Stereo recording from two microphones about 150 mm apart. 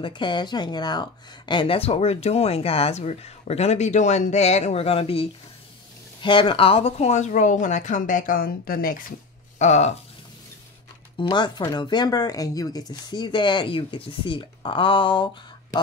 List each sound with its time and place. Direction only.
0.0 s a woman's voice: 30° left (ahead or behind); by 8.9 s 75° left (ahead or behind)
9.6 s speech: 50° left (ahead or behind)
11.1 s a woman's voice: 30° left (ahead or behind)